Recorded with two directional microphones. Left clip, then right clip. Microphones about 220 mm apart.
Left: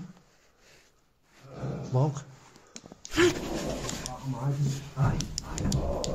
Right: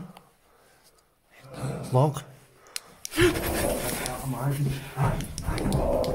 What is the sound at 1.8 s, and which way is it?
Speech, 40° right (ahead or behind).